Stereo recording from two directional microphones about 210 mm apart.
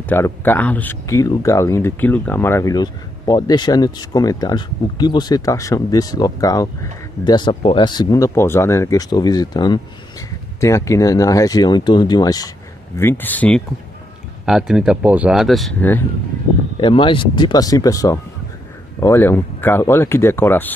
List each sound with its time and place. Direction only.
0.1 s speech: 10° left (ahead or behind)
14.4 s speech: 5° right (ahead or behind)
16.8 s speech: 25° left (ahead or behind)